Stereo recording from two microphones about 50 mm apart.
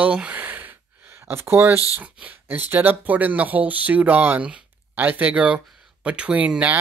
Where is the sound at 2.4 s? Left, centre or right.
Right.